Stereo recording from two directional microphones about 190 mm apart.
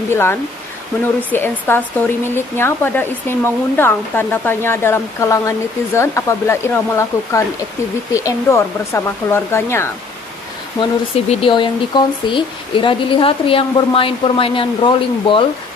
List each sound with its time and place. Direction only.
0.1 s speech: 10° left (ahead or behind)
10.8 s speech: 30° left (ahead or behind)